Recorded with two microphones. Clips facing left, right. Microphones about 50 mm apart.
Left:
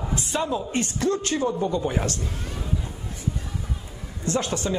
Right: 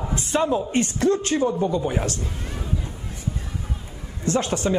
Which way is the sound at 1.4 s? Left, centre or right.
Centre.